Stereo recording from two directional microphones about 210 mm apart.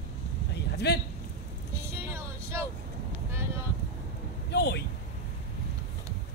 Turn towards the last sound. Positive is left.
turn(degrees=55)  # may be behind; listen again after turning